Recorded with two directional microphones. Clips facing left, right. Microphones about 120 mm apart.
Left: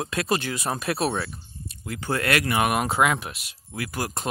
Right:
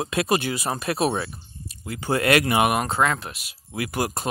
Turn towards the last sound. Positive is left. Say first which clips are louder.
# right 4 dB
turn(degrees=-20)  # may be behind; listen again after turning